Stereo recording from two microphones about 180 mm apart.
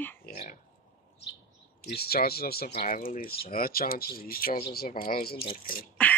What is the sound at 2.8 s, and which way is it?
Speech, 45° left (ahead or behind).